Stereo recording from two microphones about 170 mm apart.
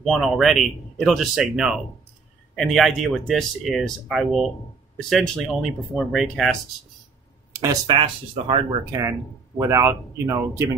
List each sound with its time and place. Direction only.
0.0 s speech: centre (ahead or behind)
7.6 s speech: 25° right (ahead or behind)
9.6 s speech: 15° right (ahead or behind)